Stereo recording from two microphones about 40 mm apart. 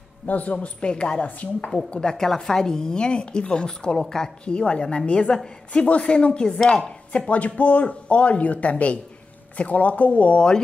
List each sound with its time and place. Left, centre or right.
0.3 s a woman's voice: left
1.2 s speech: left
1.9 s a woman's voice: centre
7.1 s speech: left